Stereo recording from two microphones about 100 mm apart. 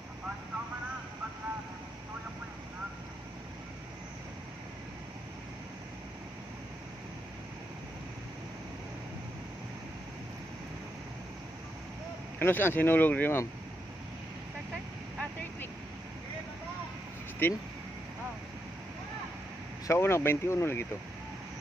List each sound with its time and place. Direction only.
12.4 s speech: 20° left (ahead or behind)
17.4 s speech: 20° left (ahead or behind)
19.9 s speech: 25° left (ahead or behind)